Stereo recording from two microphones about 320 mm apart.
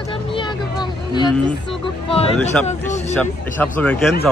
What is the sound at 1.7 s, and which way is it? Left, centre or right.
Music, centre.